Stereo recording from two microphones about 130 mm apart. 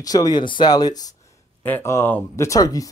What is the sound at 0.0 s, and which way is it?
Speech, 30° left (ahead or behind).